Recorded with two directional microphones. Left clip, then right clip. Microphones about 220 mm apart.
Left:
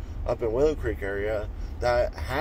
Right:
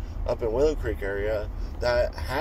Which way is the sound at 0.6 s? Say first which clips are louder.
Even; 15° left (ahead or behind).